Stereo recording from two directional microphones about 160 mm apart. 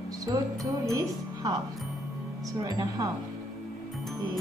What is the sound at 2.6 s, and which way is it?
Speech, 25° right (ahead or behind).